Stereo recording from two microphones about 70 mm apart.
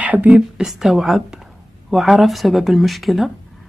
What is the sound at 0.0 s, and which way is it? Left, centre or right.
Speech, right.